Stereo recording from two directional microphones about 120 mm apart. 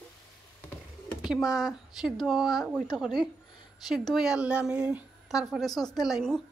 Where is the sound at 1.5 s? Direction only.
Centre (ahead or behind).